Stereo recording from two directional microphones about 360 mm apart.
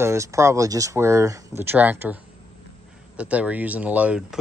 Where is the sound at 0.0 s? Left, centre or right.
Centre.